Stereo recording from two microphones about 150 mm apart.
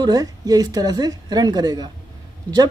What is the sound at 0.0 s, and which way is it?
Speech, 25° right (ahead or behind).